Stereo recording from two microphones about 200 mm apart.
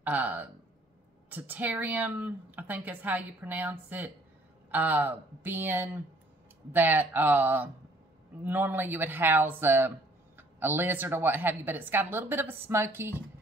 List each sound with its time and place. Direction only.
0.0 s speech: 10° right (ahead or behind)